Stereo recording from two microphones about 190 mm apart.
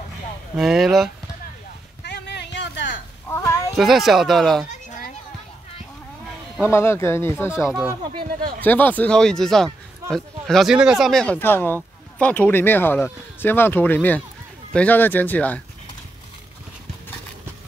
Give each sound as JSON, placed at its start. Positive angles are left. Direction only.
{"t": 0.6, "sound": "speech", "side_deg": 0}
{"t": 2.0, "sound": "a sound", "side_deg": 65}
{"t": 3.3, "sound": "a sound", "side_deg": 10}
{"t": 3.7, "sound": "speech", "side_deg": 0}
{"t": 4.8, "sound": "children playing", "side_deg": 45}
{"t": 6.6, "sound": "speech", "side_deg": 15}
{"t": 7.6, "sound": "speech", "side_deg": -5}
{"t": 8.2, "sound": "speech", "side_deg": -50}
{"t": 8.5, "sound": "speech", "side_deg": 10}